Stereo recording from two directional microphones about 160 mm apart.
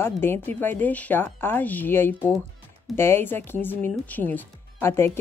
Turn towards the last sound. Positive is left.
turn(degrees=15)  # may be behind; listen again after turning